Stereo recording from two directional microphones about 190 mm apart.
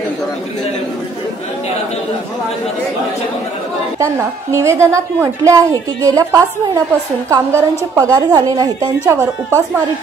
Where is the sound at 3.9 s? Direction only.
15° right (ahead or behind).